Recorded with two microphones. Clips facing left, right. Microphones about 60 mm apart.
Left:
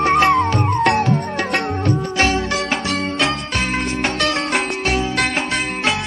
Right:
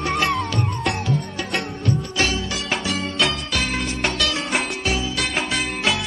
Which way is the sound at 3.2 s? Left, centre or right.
Left.